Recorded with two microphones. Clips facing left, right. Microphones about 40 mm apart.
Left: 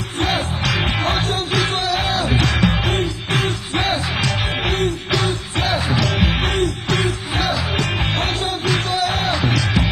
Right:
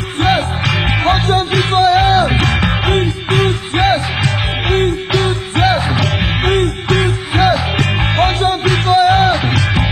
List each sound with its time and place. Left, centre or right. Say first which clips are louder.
0.2 s music: right 6 dB; right